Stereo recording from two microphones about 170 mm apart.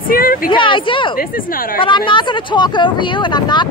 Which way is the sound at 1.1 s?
55° left (ahead or behind).